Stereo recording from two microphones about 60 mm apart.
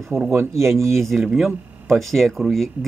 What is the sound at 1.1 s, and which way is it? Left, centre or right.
Speech, centre.